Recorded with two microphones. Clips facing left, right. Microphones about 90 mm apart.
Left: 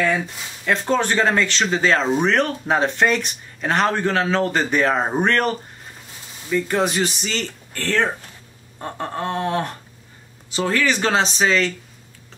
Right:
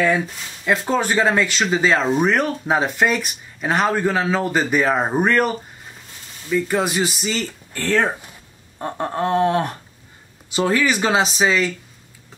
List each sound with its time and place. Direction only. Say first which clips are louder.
0.7 s speech: even; 5° right (ahead or behind)